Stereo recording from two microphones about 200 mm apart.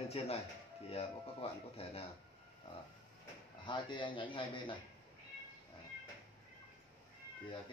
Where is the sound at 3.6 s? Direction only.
25° left (ahead or behind).